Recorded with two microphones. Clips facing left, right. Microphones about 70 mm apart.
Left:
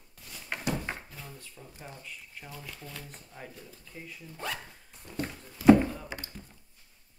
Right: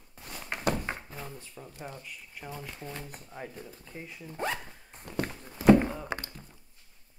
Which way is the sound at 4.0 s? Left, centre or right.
Centre.